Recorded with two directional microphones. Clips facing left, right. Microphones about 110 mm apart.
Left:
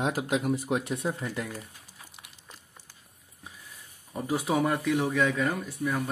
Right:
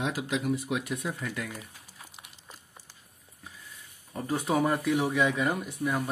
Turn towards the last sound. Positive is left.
turn(degrees=-15)  # may be behind; listen again after turning